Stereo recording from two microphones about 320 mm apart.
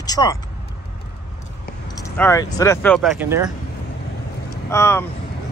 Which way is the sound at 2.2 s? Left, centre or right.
Centre.